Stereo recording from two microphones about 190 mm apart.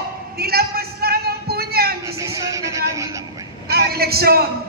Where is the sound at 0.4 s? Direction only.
55° right (ahead or behind).